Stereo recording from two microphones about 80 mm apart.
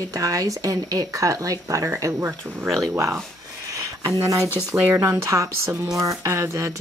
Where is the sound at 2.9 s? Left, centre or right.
Right.